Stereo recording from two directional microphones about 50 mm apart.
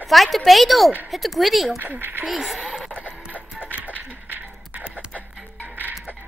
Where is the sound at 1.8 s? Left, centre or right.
Right.